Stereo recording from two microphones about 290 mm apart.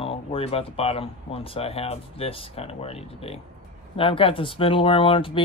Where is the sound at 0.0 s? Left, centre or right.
Centre.